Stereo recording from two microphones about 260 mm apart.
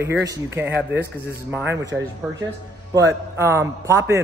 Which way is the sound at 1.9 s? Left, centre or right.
Centre.